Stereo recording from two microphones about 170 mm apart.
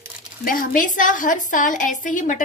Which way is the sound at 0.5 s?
55° left (ahead or behind).